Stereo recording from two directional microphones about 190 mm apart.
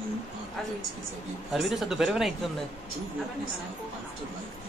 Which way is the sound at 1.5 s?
Centre (ahead or behind).